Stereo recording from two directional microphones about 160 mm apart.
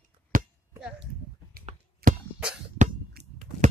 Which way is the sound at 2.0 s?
70° right (ahead or behind).